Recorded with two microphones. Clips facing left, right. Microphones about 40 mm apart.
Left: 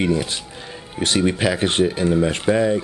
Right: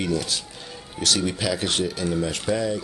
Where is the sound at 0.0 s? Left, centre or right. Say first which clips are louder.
Left 5 dB; left.